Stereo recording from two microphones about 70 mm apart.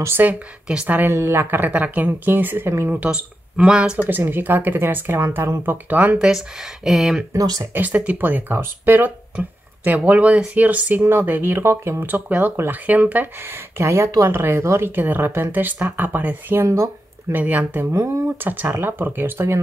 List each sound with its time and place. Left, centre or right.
0.2 s speech: right
1.1 s speech: right
2.9 s speech: centre
4.0 s speech: right
5.7 s speech: right
6.1 s speech: centre
7.3 s speech: right
7.7 s speech: right
12.1 s speech: right
13.5 s speech: right
16.6 s speech: right
17.3 s speech: right
17.9 s speech: right
18.4 s speech: right